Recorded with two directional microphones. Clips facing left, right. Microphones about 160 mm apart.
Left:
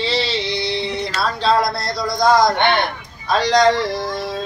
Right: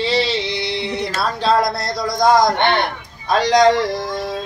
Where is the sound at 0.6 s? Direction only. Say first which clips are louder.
Even; 15° right (ahead or behind).